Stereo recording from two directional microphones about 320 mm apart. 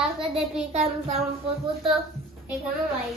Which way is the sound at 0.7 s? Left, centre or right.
Centre.